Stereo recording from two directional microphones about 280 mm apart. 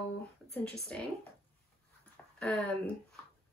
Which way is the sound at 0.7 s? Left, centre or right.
Centre.